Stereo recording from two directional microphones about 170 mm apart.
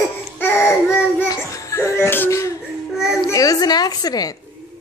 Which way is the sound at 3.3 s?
20° left (ahead or behind).